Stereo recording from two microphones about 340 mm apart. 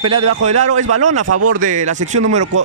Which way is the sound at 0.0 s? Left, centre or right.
Centre.